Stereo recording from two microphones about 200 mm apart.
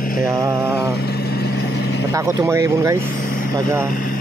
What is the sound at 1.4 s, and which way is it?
Vehicle, 60° left (ahead or behind).